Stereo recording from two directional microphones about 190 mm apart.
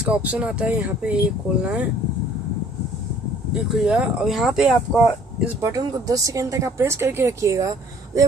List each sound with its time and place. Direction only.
0.1 s speech: 5° right (ahead or behind)
3.6 s speech: 5° right (ahead or behind)
5.7 s speech: 20° right (ahead or behind)